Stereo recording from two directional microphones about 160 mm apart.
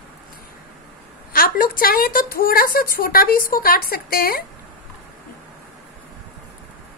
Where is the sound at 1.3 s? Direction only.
65° left (ahead or behind).